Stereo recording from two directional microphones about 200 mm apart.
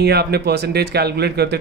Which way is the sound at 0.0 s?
55° right (ahead or behind).